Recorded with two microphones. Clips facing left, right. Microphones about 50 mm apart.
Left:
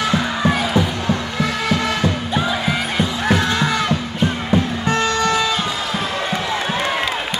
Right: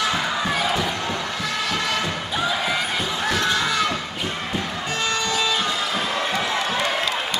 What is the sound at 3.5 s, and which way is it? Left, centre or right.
Music, centre.